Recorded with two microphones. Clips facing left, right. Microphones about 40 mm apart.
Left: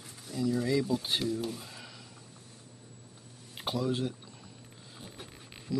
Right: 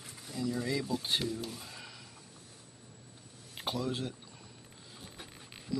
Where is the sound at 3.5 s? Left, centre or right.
Centre.